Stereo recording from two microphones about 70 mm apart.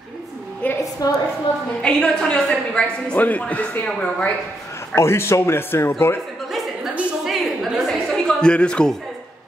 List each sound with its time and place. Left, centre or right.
0.6 s a sound: left
1.0 s a woman's voice: left
1.8 s a woman's voice: centre
4.9 s a man's voice: left
7.2 s a sound: centre
7.8 s a woman's voice: centre